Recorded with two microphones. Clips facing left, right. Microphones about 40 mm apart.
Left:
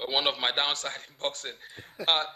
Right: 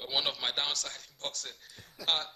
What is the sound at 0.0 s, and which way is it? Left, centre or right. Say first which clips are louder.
A man's voice: left 6 dB; left.